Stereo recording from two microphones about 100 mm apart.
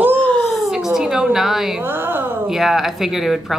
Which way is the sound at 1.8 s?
20° right (ahead or behind).